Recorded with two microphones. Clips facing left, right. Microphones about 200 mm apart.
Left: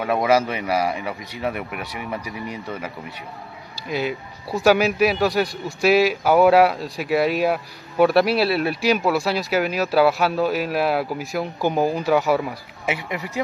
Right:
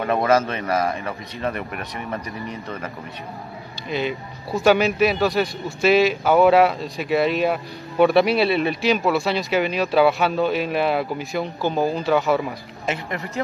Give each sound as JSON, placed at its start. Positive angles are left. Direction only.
{"t": 0.0, "sound": "speech", "side_deg": 5}
{"t": 3.9, "sound": "speech", "side_deg": 5}